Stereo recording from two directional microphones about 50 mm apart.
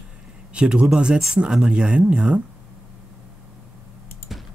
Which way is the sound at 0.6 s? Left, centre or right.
Right.